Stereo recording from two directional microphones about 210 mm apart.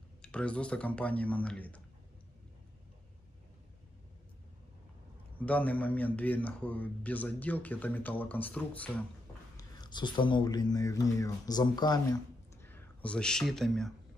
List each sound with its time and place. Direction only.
0.2 s speech: 5° left (ahead or behind)
5.4 s a man's voice: 5° left (ahead or behind)
9.6 s speech: 20° left (ahead or behind)
12.6 s speech: 10° left (ahead or behind)